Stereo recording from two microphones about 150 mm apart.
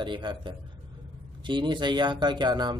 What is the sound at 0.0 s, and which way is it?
Speech, 30° right (ahead or behind).